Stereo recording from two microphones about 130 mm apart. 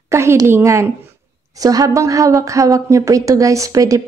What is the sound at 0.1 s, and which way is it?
A woman's voice, 20° right (ahead or behind).